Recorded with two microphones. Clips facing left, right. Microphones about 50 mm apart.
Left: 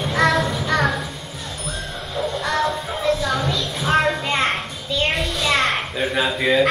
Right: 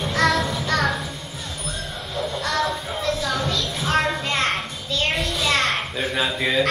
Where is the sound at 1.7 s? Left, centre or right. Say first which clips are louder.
Left 2 dB; centre.